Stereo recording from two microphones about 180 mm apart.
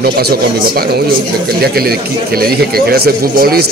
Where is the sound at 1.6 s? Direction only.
60° right (ahead or behind).